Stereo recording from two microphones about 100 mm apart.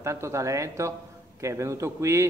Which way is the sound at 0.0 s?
30° right (ahead or behind).